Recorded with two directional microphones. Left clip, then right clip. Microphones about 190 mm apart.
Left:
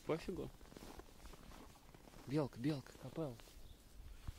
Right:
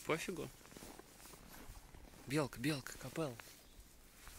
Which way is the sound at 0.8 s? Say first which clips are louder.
Even; 10° right (ahead or behind).